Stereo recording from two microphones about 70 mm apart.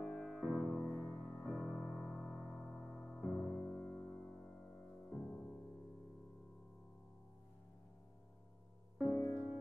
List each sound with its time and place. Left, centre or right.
0.0 s music: centre
0.9 s music: left
9.0 s music: left